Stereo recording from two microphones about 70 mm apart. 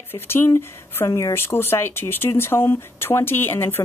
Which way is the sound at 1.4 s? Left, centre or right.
Left.